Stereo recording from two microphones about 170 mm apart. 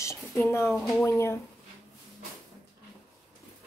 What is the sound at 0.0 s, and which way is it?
Speech, 15° left (ahead or behind).